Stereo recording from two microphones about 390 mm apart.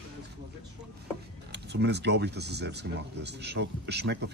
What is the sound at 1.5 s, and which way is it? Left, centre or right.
Speech, right.